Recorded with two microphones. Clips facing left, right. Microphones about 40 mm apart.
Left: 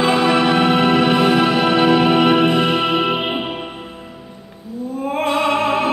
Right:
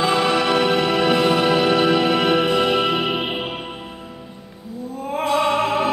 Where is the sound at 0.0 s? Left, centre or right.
Left.